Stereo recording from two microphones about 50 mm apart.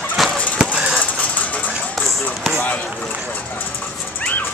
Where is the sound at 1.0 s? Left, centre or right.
Left.